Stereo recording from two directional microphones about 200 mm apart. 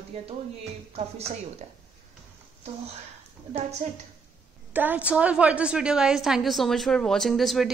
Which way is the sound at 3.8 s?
35° right (ahead or behind).